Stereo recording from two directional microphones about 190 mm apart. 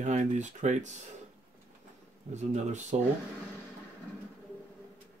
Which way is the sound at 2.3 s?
40° right (ahead or behind).